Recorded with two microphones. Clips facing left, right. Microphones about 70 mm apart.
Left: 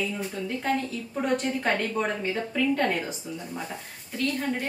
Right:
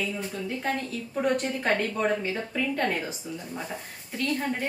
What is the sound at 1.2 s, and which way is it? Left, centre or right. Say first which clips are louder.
Speech: even; centre.